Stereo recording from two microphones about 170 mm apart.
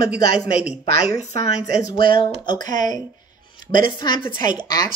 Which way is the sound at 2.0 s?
30° left (ahead or behind).